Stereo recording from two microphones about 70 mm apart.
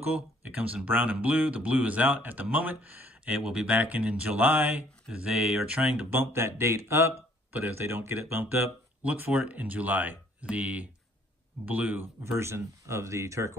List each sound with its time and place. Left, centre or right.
0.0 s speech: right
5.1 s speech: centre
6.0 s speech: right
12.0 s speech: right